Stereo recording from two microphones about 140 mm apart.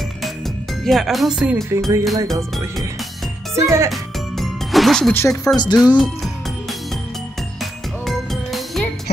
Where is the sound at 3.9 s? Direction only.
Centre (ahead or behind).